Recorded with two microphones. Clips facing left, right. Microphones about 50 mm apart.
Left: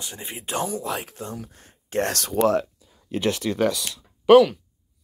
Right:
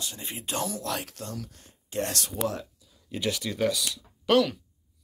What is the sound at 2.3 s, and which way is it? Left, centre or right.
Speech, left.